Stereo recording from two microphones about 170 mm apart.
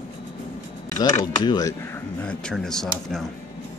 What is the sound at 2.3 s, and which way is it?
Speech, 5° left (ahead or behind).